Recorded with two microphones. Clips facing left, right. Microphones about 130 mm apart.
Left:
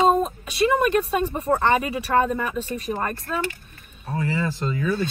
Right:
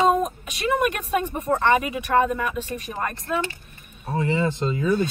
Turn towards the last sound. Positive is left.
turn(degrees=-25)  # may be behind; listen again after turning